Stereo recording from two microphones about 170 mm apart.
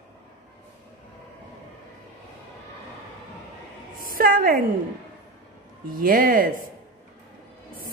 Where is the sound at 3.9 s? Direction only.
55° right (ahead or behind).